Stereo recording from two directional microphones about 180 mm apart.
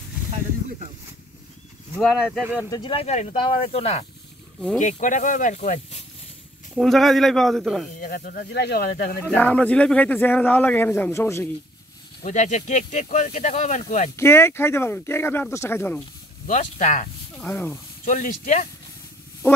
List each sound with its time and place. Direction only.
2.0 s speech: centre (ahead or behind)
2.7 s speech: 30° left (ahead or behind)
6.7 s speech: centre (ahead or behind)
8.0 s speech: 50° left (ahead or behind)
8.5 s speech: 65° left (ahead or behind)
9.2 s a man's voice: 10° left (ahead or behind)
12.2 s speech: 40° left (ahead or behind)
14.1 s a man's voice: 15° left (ahead or behind)
16.4 s speech: 45° left (ahead or behind)
17.4 s a man's voice: 10° left (ahead or behind)
18.0 s speech: 45° left (ahead or behind)